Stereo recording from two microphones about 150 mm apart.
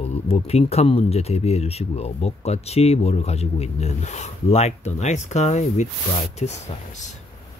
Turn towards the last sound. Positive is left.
turn(degrees=50)  # may be behind; listen again after turning